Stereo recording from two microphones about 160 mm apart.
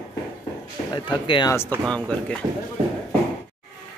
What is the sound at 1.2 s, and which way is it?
Speech, 30° left (ahead or behind).